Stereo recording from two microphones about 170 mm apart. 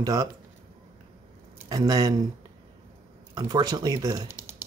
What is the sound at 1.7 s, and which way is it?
Speech, 20° right (ahead or behind).